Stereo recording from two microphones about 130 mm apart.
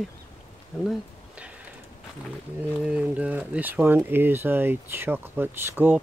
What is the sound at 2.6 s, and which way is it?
Speech, 10° right (ahead or behind).